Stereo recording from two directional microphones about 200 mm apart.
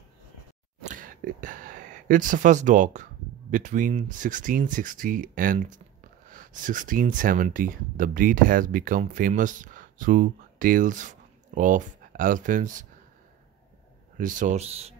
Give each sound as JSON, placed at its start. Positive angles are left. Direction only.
{"t": 0.8, "sound": "speech", "side_deg": -45}
{"t": 14.1, "sound": "speech", "side_deg": -40}